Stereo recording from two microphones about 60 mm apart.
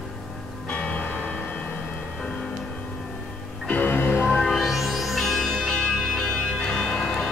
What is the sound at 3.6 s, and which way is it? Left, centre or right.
Music, left.